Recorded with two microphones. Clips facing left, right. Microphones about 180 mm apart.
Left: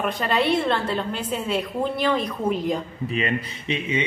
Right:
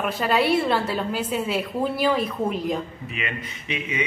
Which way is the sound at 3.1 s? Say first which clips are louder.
Left 7 dB; 30° left (ahead or behind).